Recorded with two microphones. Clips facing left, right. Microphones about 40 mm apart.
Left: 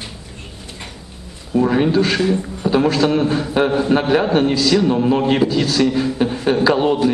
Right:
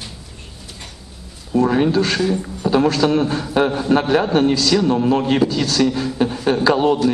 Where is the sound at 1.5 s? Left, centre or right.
Centre.